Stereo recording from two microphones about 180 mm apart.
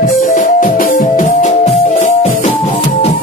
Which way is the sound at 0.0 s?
50° left (ahead or behind).